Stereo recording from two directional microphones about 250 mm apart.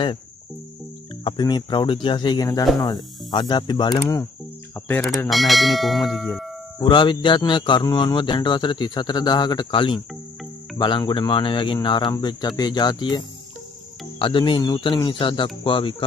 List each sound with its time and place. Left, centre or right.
1.2 s speech: centre
6.8 s speech: centre
14.2 s speech: centre